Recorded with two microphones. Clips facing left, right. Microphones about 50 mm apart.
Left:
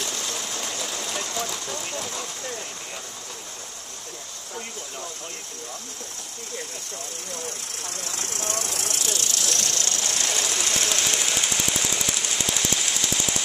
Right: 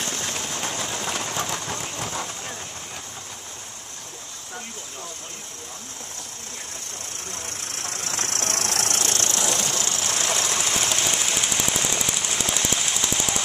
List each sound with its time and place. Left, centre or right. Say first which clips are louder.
0.0 s sewing machine: right 1 dB; right
0.7 s sewing machine: right 3 dB; right
2.0 s a sound: right 2 dB; right
7.9 s engine: right 4 dB; right
9.4 s a sound: right 2 dB; centre
11.9 s jackhammer: right 1 dB; centre